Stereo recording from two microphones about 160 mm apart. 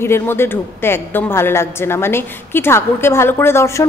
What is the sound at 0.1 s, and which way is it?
A woman's voice, 15° left (ahead or behind).